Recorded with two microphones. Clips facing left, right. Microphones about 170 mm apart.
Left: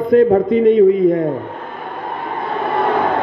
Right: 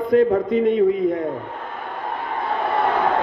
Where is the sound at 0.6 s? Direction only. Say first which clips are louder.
Left 7 dB; 65° left (ahead or behind).